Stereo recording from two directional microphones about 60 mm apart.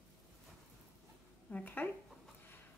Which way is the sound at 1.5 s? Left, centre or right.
Left.